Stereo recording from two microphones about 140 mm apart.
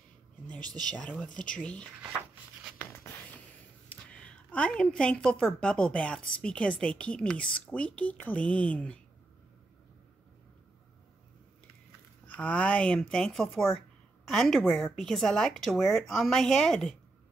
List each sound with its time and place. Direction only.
0.6 s speech: 30° right (ahead or behind)
0.9 s a woman's voice: 10° left (ahead or behind)
3.9 s a woman's voice: 10° left (ahead or behind)
12.4 s a woman's voice: 10° left (ahead or behind)